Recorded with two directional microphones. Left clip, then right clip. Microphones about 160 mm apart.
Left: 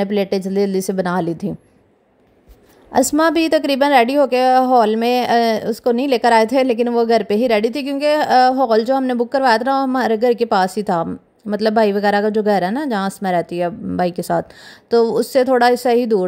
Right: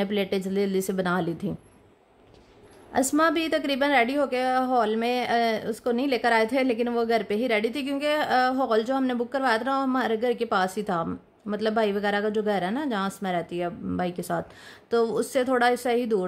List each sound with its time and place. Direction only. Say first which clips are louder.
0.0 s a woman's voice: left 8 dB; 35° left (ahead or behind)
2.9 s a woman's voice: left 8 dB; 40° left (ahead or behind)